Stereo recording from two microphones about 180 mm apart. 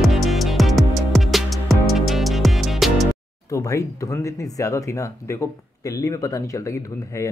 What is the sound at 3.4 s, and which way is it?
Speech, 15° left (ahead or behind).